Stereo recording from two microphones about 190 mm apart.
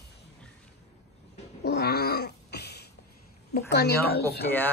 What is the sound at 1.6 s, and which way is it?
Cat, 60° left (ahead or behind).